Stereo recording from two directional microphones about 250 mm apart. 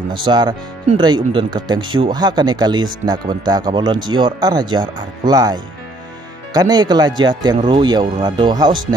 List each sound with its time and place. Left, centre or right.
0.1 s speech: centre